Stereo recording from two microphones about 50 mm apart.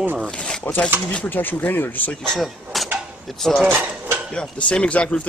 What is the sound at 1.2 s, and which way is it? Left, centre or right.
Speech, left.